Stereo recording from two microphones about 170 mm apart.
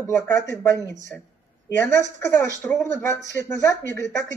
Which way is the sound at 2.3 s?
15° left (ahead or behind).